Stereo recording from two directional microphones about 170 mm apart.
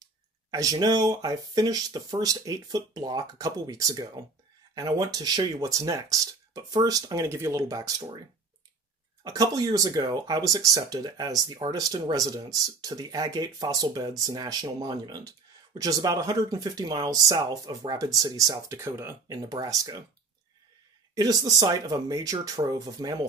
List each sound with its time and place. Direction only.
0.5 s speech: 20° right (ahead or behind)
9.2 s speech: 20° right (ahead or behind)
21.1 s speech: 20° right (ahead or behind)